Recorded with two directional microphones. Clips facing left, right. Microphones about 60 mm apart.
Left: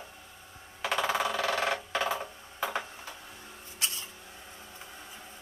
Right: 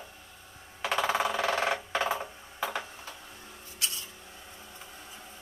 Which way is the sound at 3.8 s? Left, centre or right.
Left.